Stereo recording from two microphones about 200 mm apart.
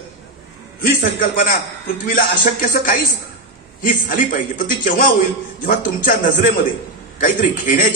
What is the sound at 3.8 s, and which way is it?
A man's voice, 40° left (ahead or behind).